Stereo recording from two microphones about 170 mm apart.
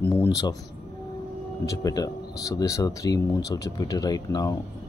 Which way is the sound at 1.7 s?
20° left (ahead or behind).